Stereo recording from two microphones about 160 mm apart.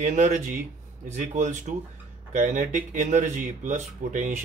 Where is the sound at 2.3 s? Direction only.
55° right (ahead or behind).